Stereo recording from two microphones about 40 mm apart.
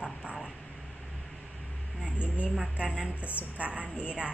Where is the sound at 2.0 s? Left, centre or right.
Right.